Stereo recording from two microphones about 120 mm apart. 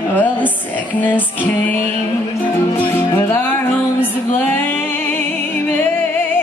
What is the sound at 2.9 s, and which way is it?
Music, 20° left (ahead or behind).